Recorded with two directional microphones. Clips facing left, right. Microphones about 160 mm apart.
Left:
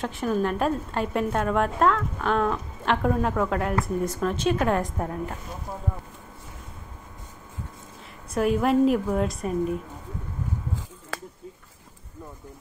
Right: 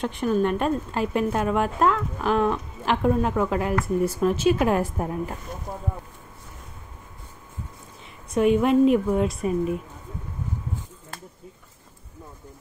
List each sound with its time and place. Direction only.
0.0 s a woman's voice: centre (ahead or behind)
8.3 s a woman's voice: centre (ahead or behind)